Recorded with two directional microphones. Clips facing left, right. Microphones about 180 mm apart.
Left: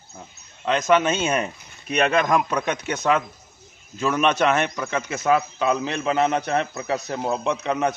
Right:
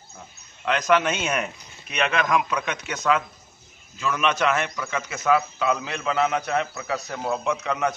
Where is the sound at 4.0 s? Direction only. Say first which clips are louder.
Left 4 dB; 40° left (ahead or behind).